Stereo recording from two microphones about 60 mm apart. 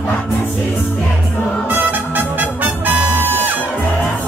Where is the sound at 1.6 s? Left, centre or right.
Right.